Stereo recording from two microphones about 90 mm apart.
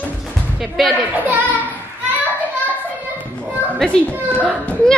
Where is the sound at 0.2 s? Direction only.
Centre (ahead or behind).